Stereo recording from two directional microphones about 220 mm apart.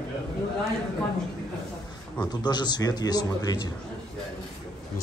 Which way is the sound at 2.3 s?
20° left (ahead or behind).